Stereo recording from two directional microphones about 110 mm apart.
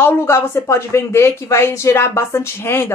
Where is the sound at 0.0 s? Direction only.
20° left (ahead or behind).